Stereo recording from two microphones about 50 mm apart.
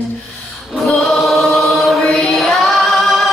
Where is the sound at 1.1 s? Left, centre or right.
Centre.